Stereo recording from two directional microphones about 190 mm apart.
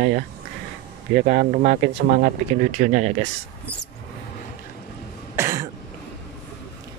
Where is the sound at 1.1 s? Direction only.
50° right (ahead or behind).